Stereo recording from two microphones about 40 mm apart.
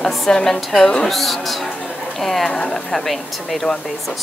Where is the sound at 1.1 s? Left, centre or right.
Centre.